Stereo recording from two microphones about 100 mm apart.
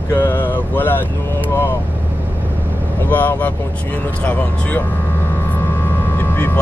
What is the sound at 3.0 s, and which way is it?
Speech, 15° left (ahead or behind).